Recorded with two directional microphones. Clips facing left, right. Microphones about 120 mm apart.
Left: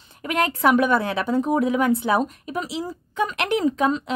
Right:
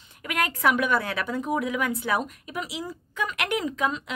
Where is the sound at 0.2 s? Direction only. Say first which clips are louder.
Left 5 dB; 30° left (ahead or behind).